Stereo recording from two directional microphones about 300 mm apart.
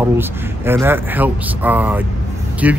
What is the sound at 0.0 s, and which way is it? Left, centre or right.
Speech, centre.